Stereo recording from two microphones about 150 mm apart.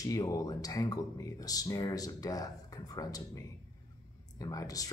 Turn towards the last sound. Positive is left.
turn(degrees=25)  # may be behind; listen again after turning